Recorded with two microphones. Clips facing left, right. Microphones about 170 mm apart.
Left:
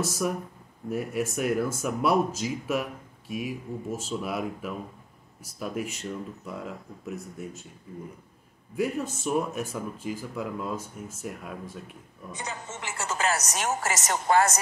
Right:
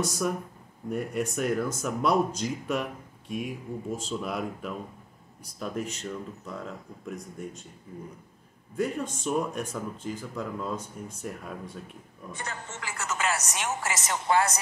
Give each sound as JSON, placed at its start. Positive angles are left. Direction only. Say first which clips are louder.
{"t": 0.0, "sound": "speech", "louder": "even", "side_deg": 5}
{"t": 8.7, "sound": "speech", "louder": "left 1 dB", "side_deg": 5}
{"t": 12.3, "sound": "a woman's voice", "louder": "left 1 dB", "side_deg": 15}